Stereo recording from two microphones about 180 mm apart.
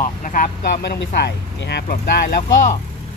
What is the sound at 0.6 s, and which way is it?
Speech, 60° left (ahead or behind).